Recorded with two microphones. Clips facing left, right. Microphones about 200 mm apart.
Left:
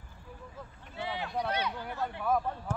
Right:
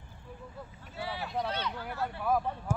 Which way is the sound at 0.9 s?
20° left (ahead or behind).